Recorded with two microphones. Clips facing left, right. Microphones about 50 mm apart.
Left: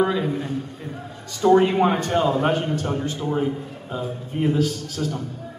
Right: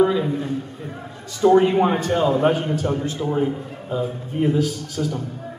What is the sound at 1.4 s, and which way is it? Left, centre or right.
A man's voice, centre.